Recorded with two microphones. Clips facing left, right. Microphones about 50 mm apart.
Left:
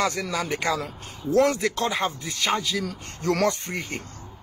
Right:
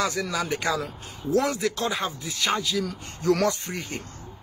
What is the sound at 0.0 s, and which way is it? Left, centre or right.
Speech, left.